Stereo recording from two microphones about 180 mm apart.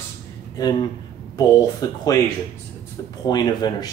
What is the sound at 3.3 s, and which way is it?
Speech, 20° left (ahead or behind).